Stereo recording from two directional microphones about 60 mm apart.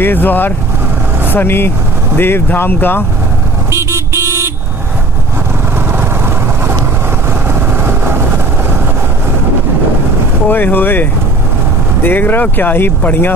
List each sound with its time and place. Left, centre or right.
0.0 s speech: left
3.7 s vehicle: right
7.8 s vehicle: right
10.5 s speech: left